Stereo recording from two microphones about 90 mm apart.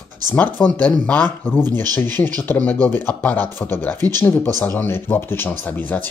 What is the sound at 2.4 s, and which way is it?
Speech, 20° left (ahead or behind).